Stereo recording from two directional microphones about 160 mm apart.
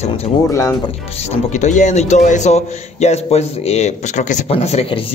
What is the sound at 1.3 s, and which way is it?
A man's voice, 50° left (ahead or behind).